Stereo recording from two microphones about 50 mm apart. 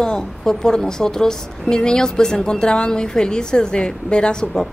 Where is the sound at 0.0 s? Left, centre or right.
Centre.